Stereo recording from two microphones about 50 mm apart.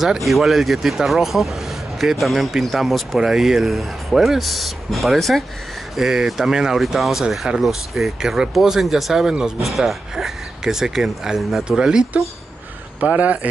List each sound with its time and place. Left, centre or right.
0.0 s speech: centre
13.0 s speech: right